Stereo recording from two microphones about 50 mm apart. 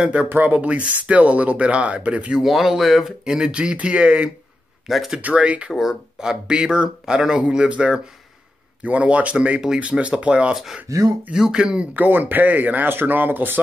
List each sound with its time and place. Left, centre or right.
0.0 s speech: right
0.3 s speech: right
0.7 s speech: right
2.3 s speech: centre; by 4.3 s right
4.8 s speech: centre
5.3 s speech: right
5.7 s speech: centre; by 10.5 s right
10.5 s speech: centre
11.9 s speech: right